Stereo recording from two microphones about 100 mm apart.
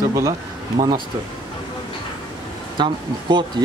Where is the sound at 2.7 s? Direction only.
50° right (ahead or behind).